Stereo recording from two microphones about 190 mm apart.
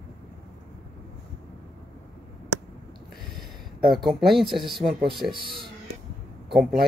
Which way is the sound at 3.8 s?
Centre (ahead or behind).